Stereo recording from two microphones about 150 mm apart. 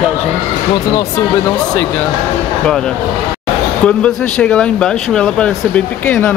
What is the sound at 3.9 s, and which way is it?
Speech, 10° left (ahead or behind).